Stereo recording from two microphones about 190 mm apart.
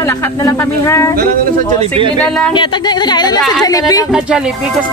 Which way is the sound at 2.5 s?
25° left (ahead or behind).